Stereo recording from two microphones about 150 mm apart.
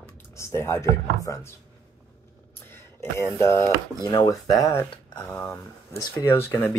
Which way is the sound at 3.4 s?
20° left (ahead or behind).